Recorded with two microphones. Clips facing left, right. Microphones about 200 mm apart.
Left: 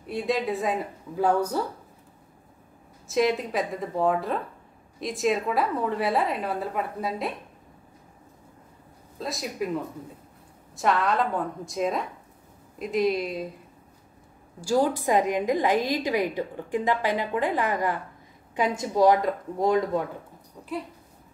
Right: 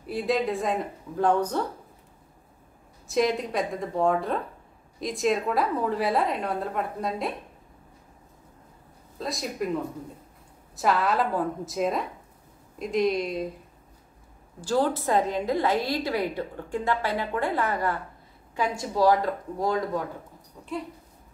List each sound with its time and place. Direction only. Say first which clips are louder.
0.0 s a woman's voice: right 1 dB; centre (ahead or behind)
3.1 s a woman's voice: left 1 dB; centre (ahead or behind)
9.2 s a woman's voice: even; centre (ahead or behind)
10.8 s a woman's voice: even; centre (ahead or behind)
14.6 s a woman's voice: left 1 dB; 10° left (ahead or behind)